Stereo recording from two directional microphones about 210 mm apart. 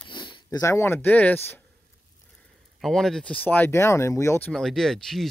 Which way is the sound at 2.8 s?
Centre (ahead or behind).